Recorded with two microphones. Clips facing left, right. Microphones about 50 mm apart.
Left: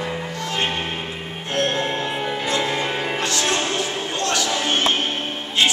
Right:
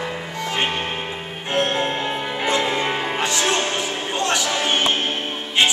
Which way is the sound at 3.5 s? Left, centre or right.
Centre.